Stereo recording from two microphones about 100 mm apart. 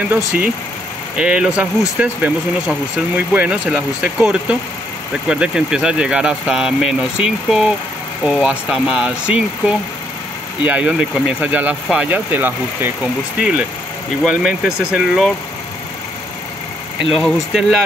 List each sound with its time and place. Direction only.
1.1 s speech: 10° right (ahead or behind)
17.2 s speech: centre (ahead or behind)